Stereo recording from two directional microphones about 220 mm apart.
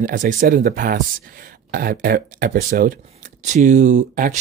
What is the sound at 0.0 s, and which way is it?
Speech, 35° right (ahead or behind).